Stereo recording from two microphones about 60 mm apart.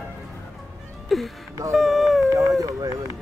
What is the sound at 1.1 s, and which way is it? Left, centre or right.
Speech, centre.